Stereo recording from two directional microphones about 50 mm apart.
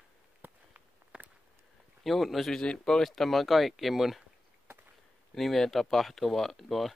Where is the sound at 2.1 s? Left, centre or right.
Centre.